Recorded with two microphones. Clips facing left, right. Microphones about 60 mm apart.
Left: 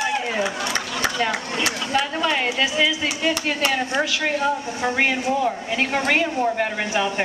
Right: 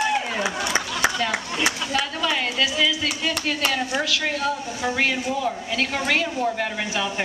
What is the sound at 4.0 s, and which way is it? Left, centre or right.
Speech, centre.